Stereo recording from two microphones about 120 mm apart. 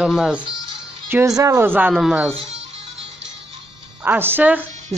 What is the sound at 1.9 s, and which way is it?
Speech, 5° right (ahead or behind).